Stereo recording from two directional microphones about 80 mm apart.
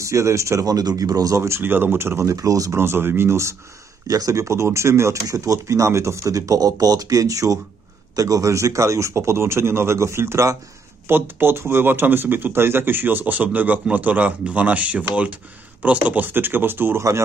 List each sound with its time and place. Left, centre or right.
0.0 s speech: right
2.7 s speech: right
4.1 s speech: right